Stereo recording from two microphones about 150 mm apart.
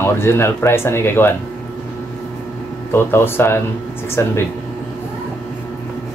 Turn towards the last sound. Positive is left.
turn(degrees=20)  # may be behind; listen again after turning